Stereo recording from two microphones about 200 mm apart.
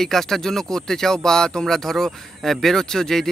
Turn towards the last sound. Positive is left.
turn(degrees=0)  # may be behind; listen again after turning